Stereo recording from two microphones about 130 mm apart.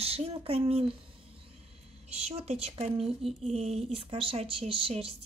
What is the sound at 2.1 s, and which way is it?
Speech, 55° right (ahead or behind).